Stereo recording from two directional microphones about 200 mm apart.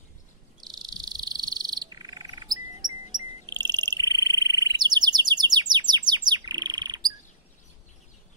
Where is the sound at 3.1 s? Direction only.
20° right (ahead or behind).